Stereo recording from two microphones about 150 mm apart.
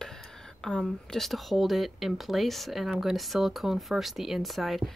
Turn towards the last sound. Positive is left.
turn(degrees=0)  # may be behind; listen again after turning